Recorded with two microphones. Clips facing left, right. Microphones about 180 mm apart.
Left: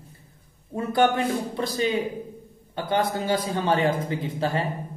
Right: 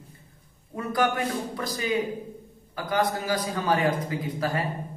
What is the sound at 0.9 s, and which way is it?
A woman's voice, 25° left (ahead or behind).